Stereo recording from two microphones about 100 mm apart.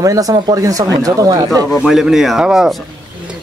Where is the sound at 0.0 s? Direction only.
35° right (ahead or behind).